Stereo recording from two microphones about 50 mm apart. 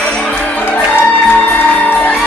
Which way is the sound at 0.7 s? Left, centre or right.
Left.